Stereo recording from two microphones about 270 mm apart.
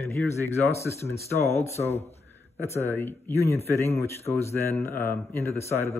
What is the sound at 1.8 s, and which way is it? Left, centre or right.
Speech, left.